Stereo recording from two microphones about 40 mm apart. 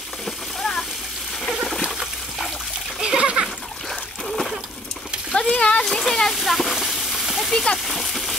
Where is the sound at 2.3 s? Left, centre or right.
Centre.